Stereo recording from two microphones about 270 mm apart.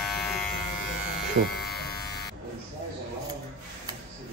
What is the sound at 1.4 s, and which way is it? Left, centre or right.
Speech, right.